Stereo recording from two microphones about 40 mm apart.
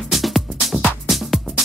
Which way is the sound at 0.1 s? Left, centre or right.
Centre.